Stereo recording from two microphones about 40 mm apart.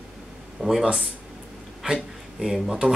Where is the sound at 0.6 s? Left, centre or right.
Centre.